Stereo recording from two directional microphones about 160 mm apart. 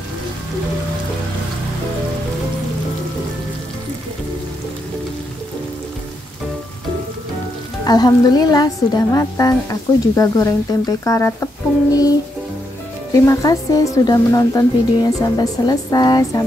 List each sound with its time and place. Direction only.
7.8 s a woman's voice: 25° left (ahead or behind)